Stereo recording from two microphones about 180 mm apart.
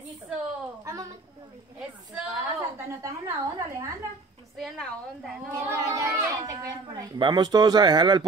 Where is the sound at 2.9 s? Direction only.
15° right (ahead or behind).